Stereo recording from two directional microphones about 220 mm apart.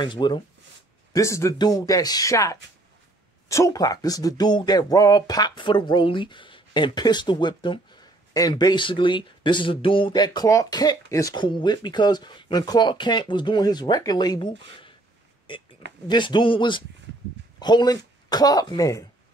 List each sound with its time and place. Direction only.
0.0 s speech: 20° left (ahead or behind)